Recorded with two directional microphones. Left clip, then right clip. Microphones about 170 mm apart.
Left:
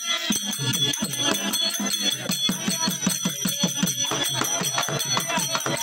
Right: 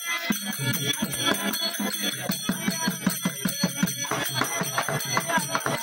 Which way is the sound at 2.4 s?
20° left (ahead or behind).